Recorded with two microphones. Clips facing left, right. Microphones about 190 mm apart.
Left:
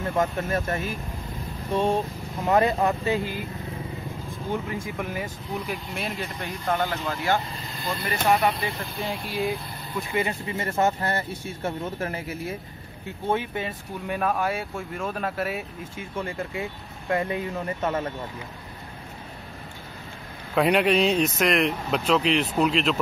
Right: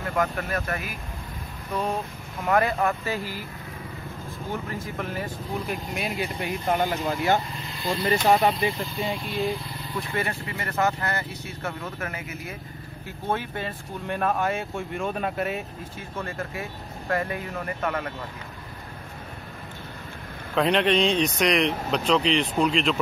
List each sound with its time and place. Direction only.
0.0 s speech: 25° left (ahead or behind)
4.8 s speech: 10° left (ahead or behind)
5.9 s speech: centre (ahead or behind)
6.4 s speech: 15° right (ahead or behind)
8.3 s speech: 30° right (ahead or behind)
8.9 s speech: 5° left (ahead or behind)
10.4 s speech: 25° left (ahead or behind)
13.3 s speech: 15° left (ahead or behind)
20.5 s speech: 10° left (ahead or behind)